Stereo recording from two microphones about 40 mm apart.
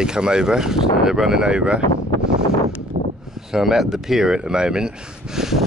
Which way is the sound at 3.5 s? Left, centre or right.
Centre.